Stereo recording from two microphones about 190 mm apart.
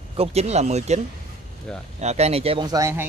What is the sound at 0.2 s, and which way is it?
Speech, 35° right (ahead or behind).